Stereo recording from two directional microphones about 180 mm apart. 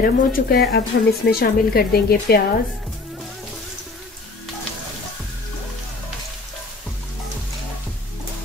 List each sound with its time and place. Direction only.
0.0 s speech: 55° left (ahead or behind)